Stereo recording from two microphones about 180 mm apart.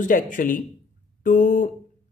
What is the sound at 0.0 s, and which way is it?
A man's voice, 50° left (ahead or behind).